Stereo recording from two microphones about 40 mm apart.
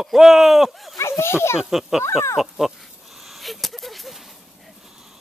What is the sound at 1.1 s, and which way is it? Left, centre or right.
Speech, left.